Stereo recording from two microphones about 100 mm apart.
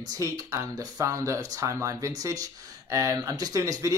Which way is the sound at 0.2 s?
35° right (ahead or behind).